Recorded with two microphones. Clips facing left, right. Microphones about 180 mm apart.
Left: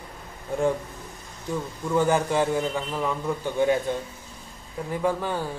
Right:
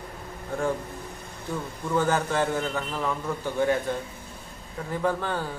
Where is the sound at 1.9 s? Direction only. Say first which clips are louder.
Left 3 dB; 10° left (ahead or behind).